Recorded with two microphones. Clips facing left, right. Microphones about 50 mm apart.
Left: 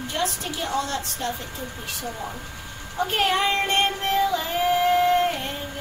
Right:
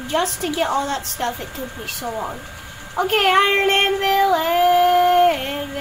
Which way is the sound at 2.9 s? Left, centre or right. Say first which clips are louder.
Right 6 dB; right.